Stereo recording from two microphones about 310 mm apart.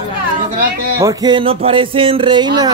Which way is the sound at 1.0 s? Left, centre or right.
Centre.